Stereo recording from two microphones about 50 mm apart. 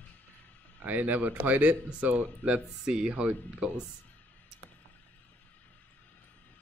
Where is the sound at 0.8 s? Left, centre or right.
Right.